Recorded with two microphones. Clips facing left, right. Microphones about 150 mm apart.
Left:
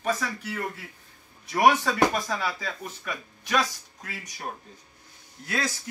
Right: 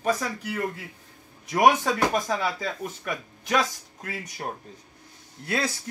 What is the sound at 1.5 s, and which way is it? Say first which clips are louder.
Speech: right 1 dB; 20° right (ahead or behind).